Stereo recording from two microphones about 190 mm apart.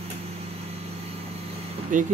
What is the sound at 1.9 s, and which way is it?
Speech, 45° right (ahead or behind).